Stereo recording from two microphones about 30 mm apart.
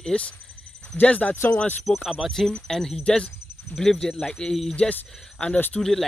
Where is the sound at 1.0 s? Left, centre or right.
Left.